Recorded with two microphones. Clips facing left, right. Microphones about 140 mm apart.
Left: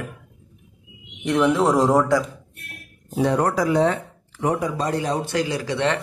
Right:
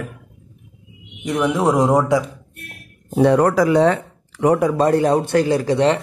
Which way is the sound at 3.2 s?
80° right.